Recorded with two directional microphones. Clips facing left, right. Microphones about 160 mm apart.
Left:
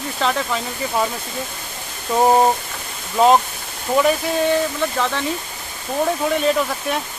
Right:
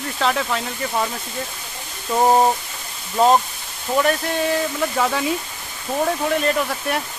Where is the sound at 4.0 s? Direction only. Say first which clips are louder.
Left 2 dB; centre (ahead or behind).